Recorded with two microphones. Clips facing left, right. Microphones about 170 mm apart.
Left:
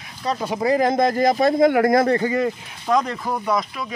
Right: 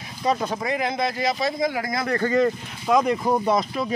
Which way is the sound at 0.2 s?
10° right (ahead or behind).